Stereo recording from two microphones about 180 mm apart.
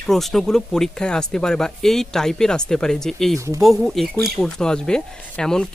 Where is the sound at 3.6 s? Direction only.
Centre (ahead or behind).